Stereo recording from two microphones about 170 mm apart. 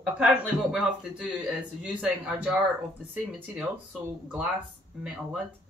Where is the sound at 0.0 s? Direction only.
5° right (ahead or behind).